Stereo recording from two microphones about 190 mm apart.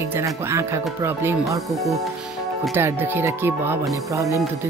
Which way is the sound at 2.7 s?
15° right (ahead or behind).